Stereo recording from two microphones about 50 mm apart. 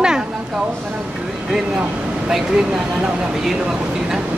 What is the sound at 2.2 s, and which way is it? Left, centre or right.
Speech, centre.